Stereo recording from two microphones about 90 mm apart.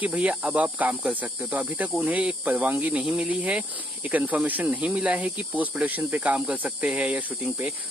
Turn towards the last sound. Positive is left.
turn(degrees=-10)  # may be behind; listen again after turning